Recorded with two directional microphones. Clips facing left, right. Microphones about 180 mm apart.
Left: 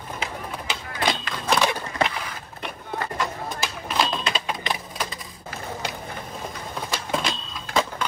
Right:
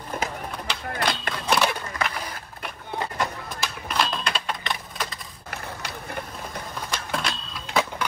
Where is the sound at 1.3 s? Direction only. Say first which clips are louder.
Even; centre (ahead or behind).